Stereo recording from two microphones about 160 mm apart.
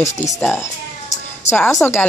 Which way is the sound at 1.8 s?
15° left (ahead or behind).